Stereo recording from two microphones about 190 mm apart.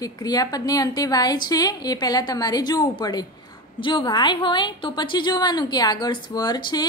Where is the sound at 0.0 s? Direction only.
20° left (ahead or behind).